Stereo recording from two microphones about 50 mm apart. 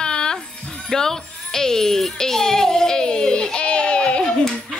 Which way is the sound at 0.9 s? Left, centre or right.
Centre.